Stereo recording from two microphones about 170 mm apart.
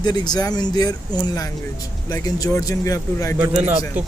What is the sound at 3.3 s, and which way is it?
Speech, 10° right (ahead or behind).